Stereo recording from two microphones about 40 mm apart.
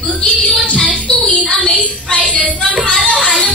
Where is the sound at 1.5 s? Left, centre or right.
Left.